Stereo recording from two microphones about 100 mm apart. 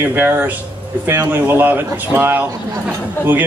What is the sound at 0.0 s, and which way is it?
Speech, 20° right (ahead or behind).